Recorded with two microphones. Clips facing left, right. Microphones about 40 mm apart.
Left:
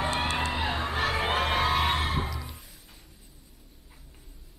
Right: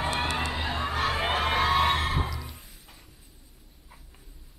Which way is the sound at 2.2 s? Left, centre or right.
Centre.